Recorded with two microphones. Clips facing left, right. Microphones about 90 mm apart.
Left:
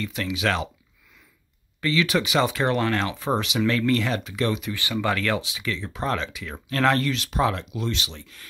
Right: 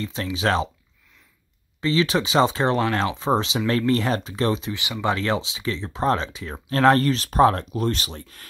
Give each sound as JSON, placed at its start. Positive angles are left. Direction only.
{"t": 0.0, "sound": "speech", "side_deg": -30}
{"t": 1.8, "sound": "speech", "side_deg": -30}